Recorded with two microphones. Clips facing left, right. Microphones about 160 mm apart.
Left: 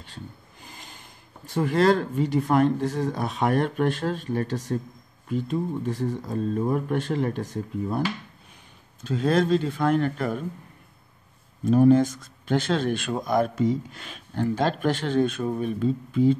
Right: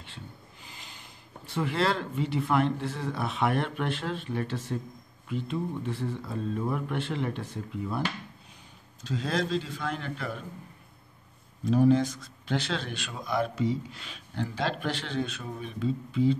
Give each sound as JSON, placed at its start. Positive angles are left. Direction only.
{"t": 0.0, "sound": "speech", "side_deg": 45}
{"t": 9.0, "sound": "speech", "side_deg": 55}
{"t": 11.6, "sound": "speech", "side_deg": 50}